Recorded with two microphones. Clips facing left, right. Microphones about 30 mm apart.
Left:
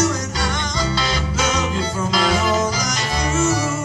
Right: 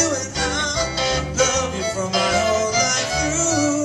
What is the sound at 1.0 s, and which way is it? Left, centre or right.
Music, left.